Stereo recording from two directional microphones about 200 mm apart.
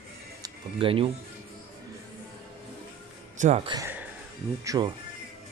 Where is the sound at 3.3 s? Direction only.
35° right (ahead or behind).